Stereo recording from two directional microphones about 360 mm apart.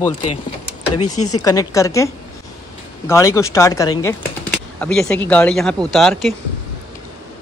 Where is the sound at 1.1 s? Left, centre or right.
Left.